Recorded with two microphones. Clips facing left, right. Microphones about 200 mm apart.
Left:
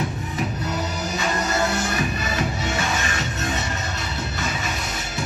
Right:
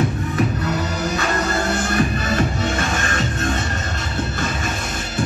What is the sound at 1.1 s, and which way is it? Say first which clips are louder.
Music: right 1 dB; 60° right (ahead or behind).